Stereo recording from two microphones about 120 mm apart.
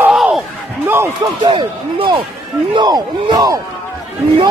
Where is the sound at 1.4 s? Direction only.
40° right (ahead or behind).